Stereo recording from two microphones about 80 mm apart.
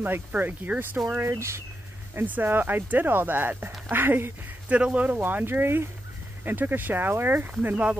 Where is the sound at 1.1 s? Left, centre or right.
Right.